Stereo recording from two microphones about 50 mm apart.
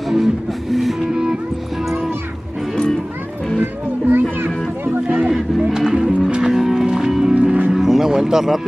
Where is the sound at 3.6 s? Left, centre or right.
Right.